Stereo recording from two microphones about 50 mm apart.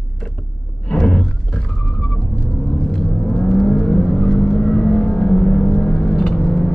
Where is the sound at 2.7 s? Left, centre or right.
Centre.